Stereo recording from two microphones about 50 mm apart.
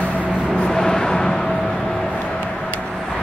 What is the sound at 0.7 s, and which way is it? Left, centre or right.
Vehicle, centre.